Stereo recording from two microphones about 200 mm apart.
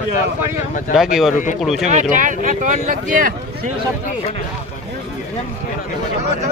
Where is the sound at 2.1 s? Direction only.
40° right (ahead or behind).